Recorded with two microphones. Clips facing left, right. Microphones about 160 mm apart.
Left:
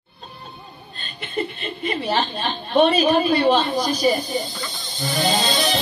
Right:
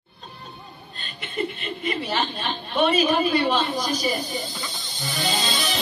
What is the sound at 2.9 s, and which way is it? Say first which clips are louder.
Speech: left 3 dB; 40° left (ahead or behind).